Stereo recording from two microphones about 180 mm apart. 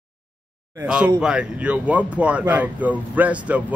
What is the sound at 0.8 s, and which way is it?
Speech, 5° right (ahead or behind).